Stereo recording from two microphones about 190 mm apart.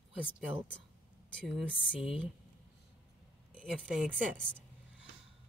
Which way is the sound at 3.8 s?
5° right (ahead or behind).